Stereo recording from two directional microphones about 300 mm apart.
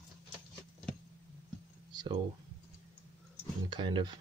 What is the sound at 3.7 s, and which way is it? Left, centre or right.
Speech, centre.